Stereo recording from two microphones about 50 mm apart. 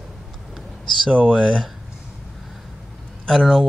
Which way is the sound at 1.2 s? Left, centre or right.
Right.